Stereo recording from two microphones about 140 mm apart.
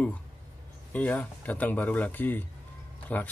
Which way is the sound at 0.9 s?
10° left (ahead or behind).